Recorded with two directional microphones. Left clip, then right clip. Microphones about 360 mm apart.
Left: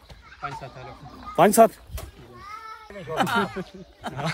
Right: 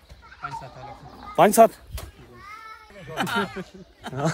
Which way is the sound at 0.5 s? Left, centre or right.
Centre.